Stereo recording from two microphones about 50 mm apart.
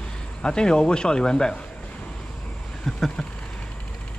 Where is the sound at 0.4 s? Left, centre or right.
Centre.